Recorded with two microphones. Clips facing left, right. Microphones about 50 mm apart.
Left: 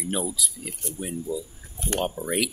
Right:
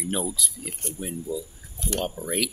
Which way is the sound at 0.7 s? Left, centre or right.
Right.